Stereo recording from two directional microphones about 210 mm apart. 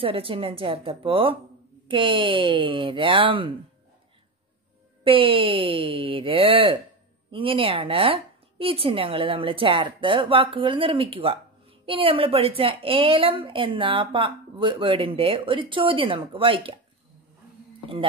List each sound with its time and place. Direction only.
0.0 s a woman's voice: 25° right (ahead or behind)
5.0 s a woman's voice: 25° right (ahead or behind)